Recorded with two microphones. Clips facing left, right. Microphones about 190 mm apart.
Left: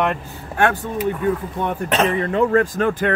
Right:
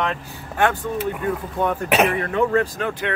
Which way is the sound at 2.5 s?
45° left (ahead or behind).